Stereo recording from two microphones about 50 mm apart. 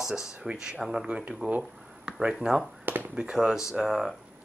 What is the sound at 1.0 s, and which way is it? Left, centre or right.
Speech, right.